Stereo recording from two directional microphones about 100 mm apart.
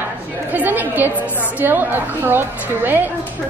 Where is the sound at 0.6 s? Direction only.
20° right (ahead or behind).